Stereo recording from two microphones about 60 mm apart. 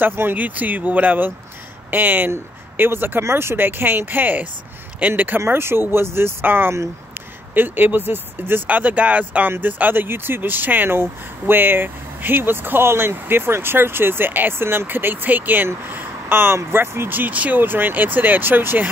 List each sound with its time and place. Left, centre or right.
0.0 s speech: right